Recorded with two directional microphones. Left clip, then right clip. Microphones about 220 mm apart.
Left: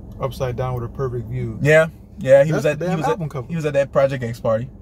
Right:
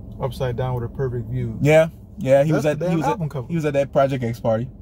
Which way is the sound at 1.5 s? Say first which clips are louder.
Left 1 dB; 10° right (ahead or behind).